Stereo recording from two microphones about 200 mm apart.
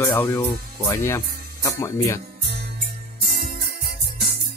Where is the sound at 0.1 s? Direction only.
10° left (ahead or behind).